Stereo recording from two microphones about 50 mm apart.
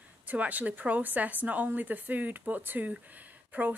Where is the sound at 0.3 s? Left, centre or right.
Right.